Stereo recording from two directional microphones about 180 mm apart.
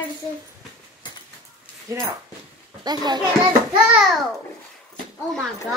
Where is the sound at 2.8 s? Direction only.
25° right (ahead or behind).